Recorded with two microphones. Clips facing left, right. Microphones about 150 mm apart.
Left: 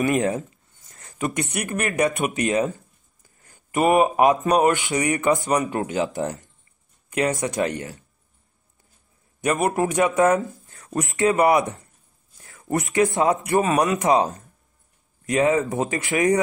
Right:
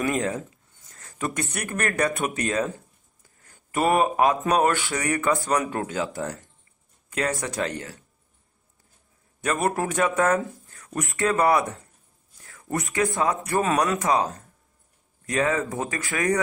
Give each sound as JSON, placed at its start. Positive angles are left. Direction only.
{"t": 0.0, "sound": "speech", "side_deg": 25}
{"t": 3.4, "sound": "a sound", "side_deg": 15}
{"t": 3.9, "sound": "speech", "side_deg": 15}
{"t": 9.4, "sound": "speech", "side_deg": 15}
{"t": 10.7, "sound": "speech", "side_deg": 25}